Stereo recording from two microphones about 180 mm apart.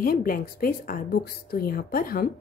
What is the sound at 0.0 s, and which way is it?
A woman's voice, 55° left (ahead or behind).